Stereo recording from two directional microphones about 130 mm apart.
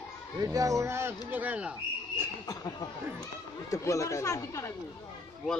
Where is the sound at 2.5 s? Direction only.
25° left (ahead or behind).